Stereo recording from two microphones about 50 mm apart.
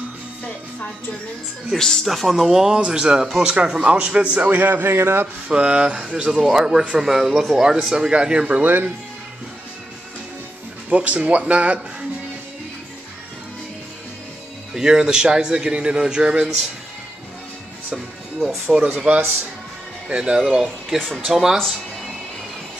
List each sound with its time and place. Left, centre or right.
1.7 s a man's voice: centre
3.8 s speech: right
4.6 s a man's voice: right
5.5 s a man's voice: right
8.5 s a man's voice: right
10.9 s speech: right
14.7 s a man's voice: centre
18.7 s a man's voice: centre
19.0 s a man's voice: right
20.1 s a man's voice: centre